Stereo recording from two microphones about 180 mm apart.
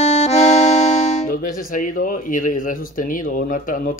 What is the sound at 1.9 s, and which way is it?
Speech, 45° left (ahead or behind).